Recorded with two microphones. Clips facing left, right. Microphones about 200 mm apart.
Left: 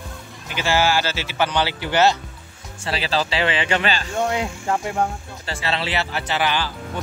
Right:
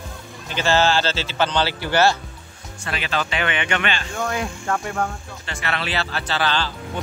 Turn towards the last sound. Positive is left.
turn(degrees=15)  # may be behind; listen again after turning